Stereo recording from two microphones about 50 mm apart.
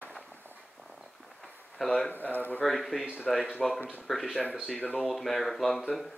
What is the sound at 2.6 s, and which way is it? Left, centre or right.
Speech, centre.